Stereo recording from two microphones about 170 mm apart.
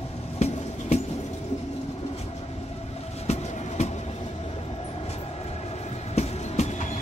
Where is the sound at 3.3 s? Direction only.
40° left (ahead or behind).